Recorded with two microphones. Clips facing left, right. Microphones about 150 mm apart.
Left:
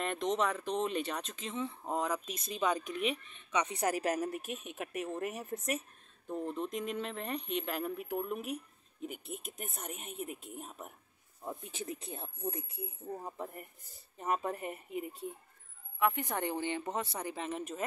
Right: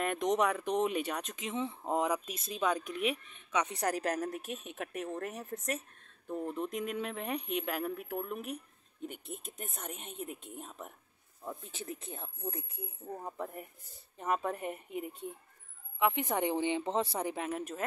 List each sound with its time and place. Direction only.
0.0 s speech: 10° right (ahead or behind)
2.2 s speech: 5° right (ahead or behind)
6.2 s speech: 5° right (ahead or behind); by 12.8 s 10° left (ahead or behind)
13.2 s speech: centre (ahead or behind)
16.0 s speech: 20° right (ahead or behind)
17.5 s speech: 5° right (ahead or behind)